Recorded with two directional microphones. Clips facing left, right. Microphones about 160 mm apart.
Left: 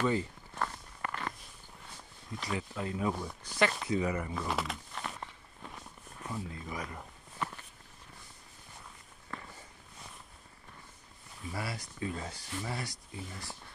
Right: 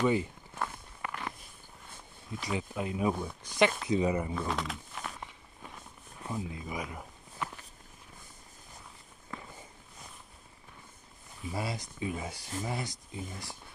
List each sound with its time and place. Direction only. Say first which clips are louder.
0.0 s walk: right 3 dB; 15° right (ahead or behind)
2.4 s speech: right 2 dB; 15° right (ahead or behind)
4.4 s speech: right 1 dB; 5° left (ahead or behind)
4.9 s walk: even; 10° right (ahead or behind)
11.5 s speech: right 3 dB; 20° right (ahead or behind)